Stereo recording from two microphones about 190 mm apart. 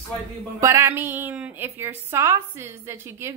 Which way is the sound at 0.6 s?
15° right (ahead or behind).